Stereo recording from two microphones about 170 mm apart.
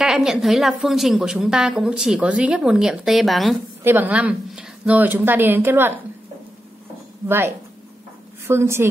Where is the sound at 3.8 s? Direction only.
10° right (ahead or behind).